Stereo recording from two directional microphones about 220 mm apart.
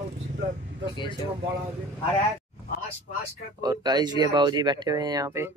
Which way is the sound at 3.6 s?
20° right (ahead or behind).